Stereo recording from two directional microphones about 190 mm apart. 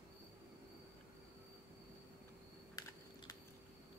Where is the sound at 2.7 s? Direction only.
20° left (ahead or behind).